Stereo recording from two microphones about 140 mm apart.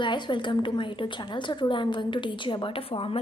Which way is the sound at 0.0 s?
35° left (ahead or behind).